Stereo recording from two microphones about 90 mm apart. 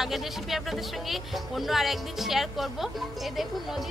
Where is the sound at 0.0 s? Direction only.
Centre (ahead or behind).